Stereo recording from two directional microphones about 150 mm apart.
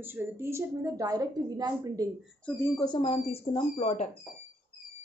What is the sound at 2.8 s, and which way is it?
Speech, 35° left (ahead or behind).